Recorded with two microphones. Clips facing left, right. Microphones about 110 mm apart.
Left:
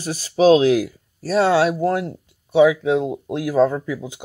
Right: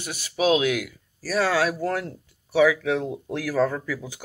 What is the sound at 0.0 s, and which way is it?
Speech, 35° left (ahead or behind).